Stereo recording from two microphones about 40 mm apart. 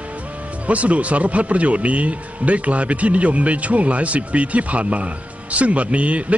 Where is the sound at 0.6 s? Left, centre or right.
Right.